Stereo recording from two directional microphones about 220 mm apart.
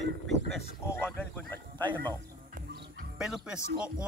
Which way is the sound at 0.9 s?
10° left (ahead or behind).